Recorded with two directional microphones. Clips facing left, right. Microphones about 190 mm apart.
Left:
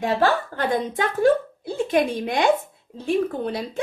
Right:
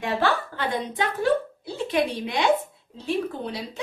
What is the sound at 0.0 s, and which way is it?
A woman's voice, 45° left (ahead or behind).